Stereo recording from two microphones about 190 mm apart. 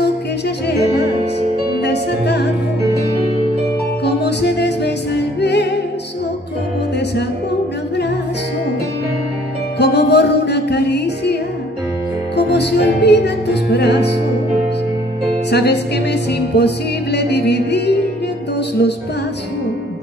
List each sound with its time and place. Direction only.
1.8 s music: 60° left (ahead or behind)
4.0 s music: 60° left (ahead or behind)
9.8 s music: 60° left (ahead or behind)
12.4 s music: 60° left (ahead or behind)
15.5 s music: 60° left (ahead or behind)